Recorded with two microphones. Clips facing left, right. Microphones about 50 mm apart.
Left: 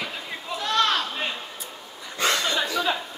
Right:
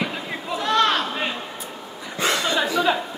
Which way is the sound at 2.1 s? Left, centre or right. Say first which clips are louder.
Right 2 dB; centre.